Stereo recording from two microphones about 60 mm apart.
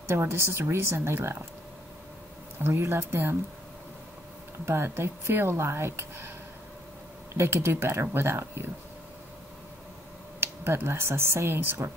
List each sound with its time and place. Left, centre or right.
0.1 s a woman's voice: right
2.6 s speech: right
4.6 s speech: right
7.3 s speech: right
10.4 s speech: right